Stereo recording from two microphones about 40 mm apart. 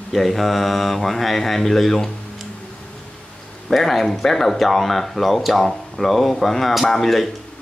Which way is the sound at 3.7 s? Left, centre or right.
Centre.